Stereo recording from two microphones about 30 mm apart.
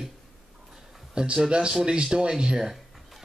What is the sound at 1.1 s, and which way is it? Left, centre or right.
Speech, right.